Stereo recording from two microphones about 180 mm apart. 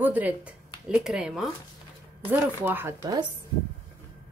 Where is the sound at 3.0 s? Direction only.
25° right (ahead or behind).